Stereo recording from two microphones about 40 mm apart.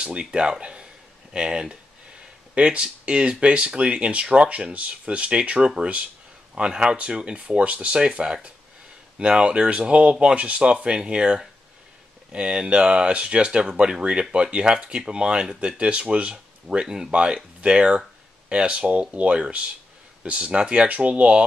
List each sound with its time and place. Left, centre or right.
0.0 s speech: right
6.5 s speech: right
9.4 s speech: right